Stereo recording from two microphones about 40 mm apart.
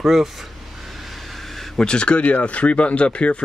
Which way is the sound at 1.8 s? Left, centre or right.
Left.